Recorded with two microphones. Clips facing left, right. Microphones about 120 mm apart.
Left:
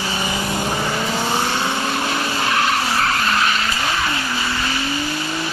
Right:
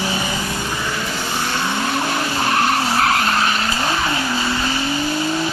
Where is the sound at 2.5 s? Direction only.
35° right (ahead or behind).